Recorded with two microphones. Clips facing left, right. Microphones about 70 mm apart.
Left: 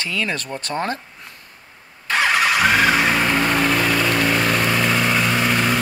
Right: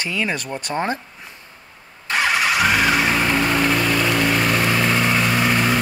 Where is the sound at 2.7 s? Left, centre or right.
Centre.